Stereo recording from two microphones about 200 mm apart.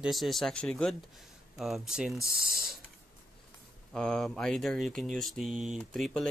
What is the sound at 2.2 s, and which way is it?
Speech, 50° right (ahead or behind).